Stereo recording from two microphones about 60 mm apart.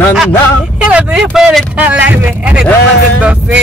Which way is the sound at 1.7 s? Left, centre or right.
Right.